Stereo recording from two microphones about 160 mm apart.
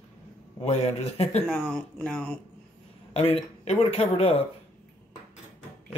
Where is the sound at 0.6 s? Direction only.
40° left (ahead or behind).